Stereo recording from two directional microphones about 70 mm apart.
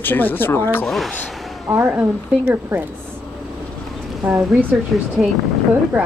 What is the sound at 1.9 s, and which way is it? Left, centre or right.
Speech, centre.